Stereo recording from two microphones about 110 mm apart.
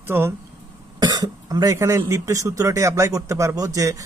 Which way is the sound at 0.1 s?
20° right (ahead or behind).